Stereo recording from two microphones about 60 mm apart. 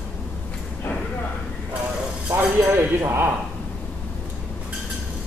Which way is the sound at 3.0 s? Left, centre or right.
Right.